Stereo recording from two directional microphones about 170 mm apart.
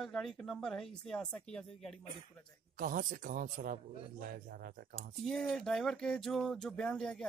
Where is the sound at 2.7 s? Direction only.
50° right (ahead or behind).